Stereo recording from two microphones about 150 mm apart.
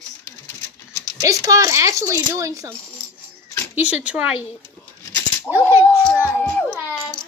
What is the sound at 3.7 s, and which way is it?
Speech, 10° right (ahead or behind).